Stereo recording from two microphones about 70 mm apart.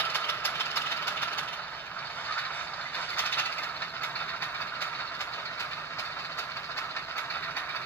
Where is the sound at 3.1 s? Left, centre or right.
Left.